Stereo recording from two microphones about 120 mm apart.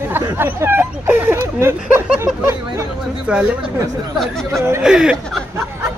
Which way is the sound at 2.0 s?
15° right (ahead or behind).